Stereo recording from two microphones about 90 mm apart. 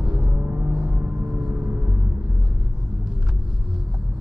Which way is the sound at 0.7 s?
10° right (ahead or behind).